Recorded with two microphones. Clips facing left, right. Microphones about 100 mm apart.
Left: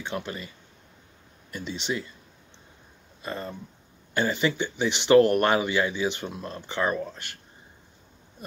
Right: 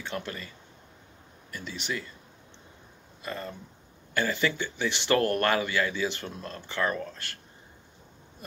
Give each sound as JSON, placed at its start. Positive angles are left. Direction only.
{"t": 0.0, "sound": "speech", "side_deg": 15}
{"t": 1.5, "sound": "speech", "side_deg": 20}
{"t": 3.2, "sound": "speech", "side_deg": 25}